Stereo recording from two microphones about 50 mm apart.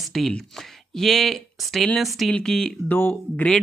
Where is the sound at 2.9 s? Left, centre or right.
Left.